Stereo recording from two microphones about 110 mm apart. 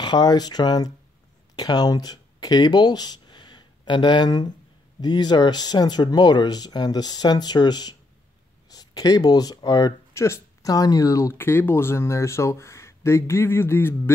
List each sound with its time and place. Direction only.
0.0 s speech: 40° left (ahead or behind)
10.1 s speech: 25° left (ahead or behind)